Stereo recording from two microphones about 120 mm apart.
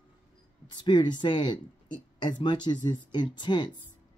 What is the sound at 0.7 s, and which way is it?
Speech, 40° left (ahead or behind).